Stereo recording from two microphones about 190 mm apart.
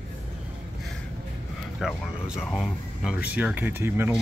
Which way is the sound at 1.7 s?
5° right (ahead or behind).